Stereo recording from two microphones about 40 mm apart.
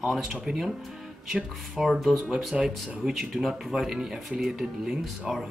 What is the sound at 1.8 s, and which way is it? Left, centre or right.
Speech, centre.